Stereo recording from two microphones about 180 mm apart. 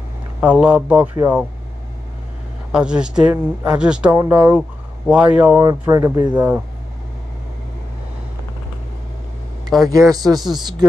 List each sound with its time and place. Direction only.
0.4 s speech: 5° right (ahead or behind)
2.7 s speech: 5° right (ahead or behind)
5.6 s speech: 20° right (ahead or behind)
9.7 s speech: centre (ahead or behind)
10.1 s speech: 20° right (ahead or behind)